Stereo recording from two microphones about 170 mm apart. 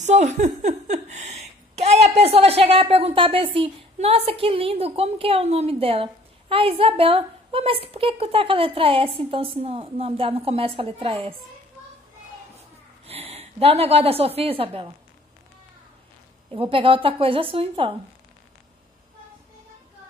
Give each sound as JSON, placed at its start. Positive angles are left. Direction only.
{"t": 0.0, "sound": "speech", "side_deg": -45}
{"t": 13.0, "sound": "a woman's voice", "side_deg": -35}
{"t": 16.5, "sound": "speech", "side_deg": -30}